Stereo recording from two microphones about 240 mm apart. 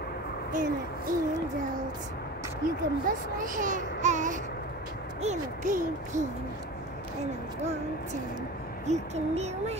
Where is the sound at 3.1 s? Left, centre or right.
Right.